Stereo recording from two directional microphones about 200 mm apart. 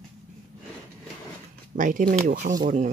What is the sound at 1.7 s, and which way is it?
Speech, 40° right (ahead or behind).